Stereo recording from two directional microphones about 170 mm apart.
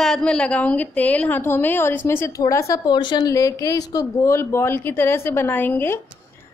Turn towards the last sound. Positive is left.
turn(degrees=10)  # may be behind; listen again after turning